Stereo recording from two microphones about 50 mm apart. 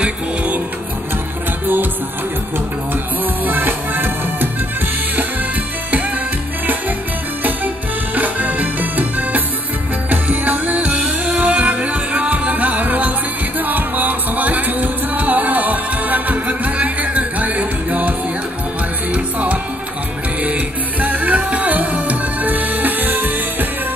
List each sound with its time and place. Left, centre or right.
3.4 s music: right
7.4 s music: right
19.1 s music: right
21.0 s music: right